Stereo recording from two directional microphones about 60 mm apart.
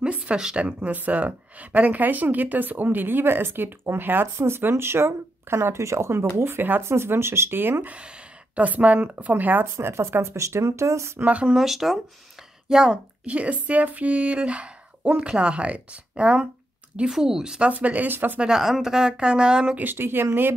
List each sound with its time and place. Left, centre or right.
0.0 s a woman's voice: centre; by 7.7 s right
7.8 s speech: right
9.8 s speech: right
11.1 s speech: right
11.5 s a woman's voice: centre
13.2 s speech: right
17.6 s speech: right
18.4 s speech: centre
19.8 s a woman's voice: right